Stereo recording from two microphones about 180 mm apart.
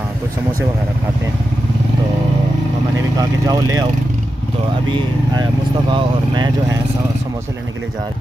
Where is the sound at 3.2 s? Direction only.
20° right (ahead or behind).